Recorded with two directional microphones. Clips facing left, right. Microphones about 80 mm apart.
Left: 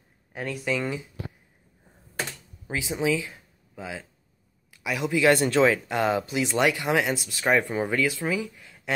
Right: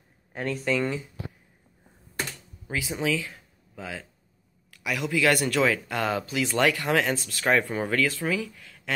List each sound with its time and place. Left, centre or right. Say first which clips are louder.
0.3 s speech: right 2 dB; centre
2.7 s speech: left 2 dB; left